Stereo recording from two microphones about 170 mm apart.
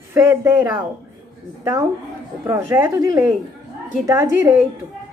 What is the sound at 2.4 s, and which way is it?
A woman's voice, 15° right (ahead or behind).